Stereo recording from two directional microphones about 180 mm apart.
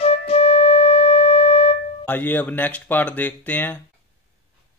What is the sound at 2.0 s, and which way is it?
Speech, 10° left (ahead or behind).